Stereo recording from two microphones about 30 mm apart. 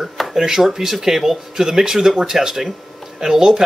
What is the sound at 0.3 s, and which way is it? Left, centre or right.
Speech, centre.